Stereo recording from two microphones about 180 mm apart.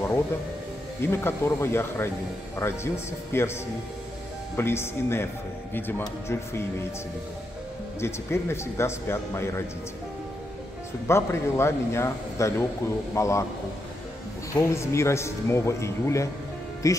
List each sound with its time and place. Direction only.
1.0 s speech: 15° left (ahead or behind)
4.6 s speech: 15° left (ahead or behind)
8.0 s speech: 15° left (ahead or behind)
11.1 s speech: 15° left (ahead or behind)
14.5 s speech: 15° left (ahead or behind)